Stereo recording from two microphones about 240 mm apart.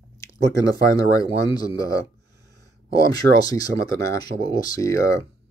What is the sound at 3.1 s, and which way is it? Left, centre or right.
Speech, centre.